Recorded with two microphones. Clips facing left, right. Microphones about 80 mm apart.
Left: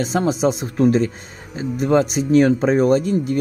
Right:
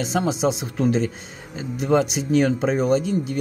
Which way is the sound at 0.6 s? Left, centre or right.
Left.